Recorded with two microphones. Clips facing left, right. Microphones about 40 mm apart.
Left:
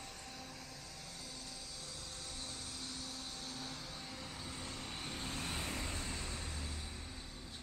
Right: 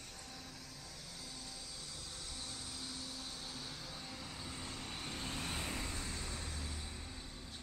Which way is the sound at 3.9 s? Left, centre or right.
Centre.